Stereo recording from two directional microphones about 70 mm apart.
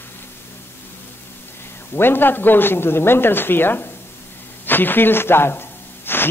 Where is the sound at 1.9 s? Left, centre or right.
Left.